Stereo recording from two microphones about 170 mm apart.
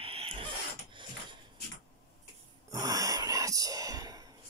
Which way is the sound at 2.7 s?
20° right (ahead or behind).